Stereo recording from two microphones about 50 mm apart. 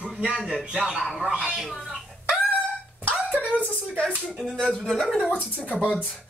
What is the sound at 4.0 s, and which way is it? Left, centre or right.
Speech, left.